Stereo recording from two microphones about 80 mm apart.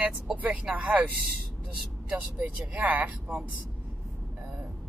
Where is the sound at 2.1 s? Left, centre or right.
Centre.